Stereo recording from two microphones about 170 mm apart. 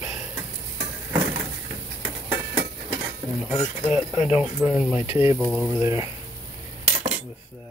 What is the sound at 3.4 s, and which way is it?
Speech, 5° right (ahead or behind).